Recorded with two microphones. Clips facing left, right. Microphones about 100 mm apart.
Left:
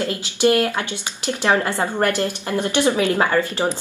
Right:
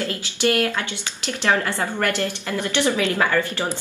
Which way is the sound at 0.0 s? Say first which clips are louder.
Left 4 dB; 20° left (ahead or behind).